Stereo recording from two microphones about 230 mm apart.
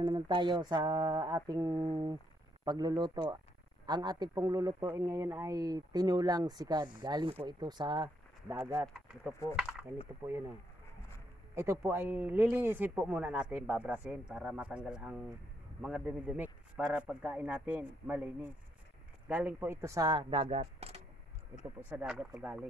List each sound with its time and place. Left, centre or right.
0.0 s speech: centre
8.8 s a man's voice: centre
11.5 s a man's voice: centre
21.8 s a man's voice: centre